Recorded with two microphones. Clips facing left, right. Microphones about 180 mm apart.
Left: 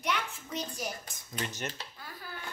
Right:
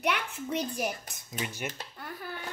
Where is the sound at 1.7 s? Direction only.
60° right (ahead or behind).